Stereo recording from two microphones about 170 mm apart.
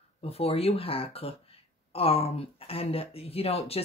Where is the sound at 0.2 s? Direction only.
35° left (ahead or behind).